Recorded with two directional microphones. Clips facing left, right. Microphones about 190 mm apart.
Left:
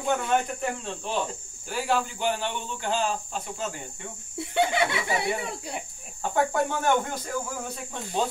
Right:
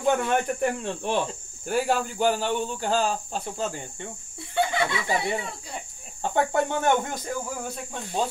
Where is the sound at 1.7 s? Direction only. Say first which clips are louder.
Right 3 dB; 45° right (ahead or behind).